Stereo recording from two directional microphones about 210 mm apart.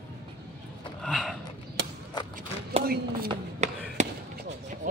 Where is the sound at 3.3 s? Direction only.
35° right (ahead or behind).